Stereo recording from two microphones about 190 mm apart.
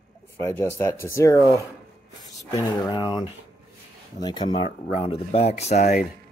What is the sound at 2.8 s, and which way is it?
Speech, 20° left (ahead or behind).